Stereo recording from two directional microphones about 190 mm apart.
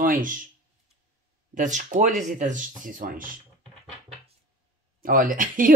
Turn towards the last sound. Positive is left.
turn(degrees=-45)  # may be behind; listen again after turning